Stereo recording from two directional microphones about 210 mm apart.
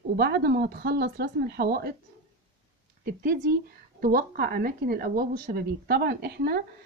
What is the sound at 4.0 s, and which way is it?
Speech, 45° right (ahead or behind).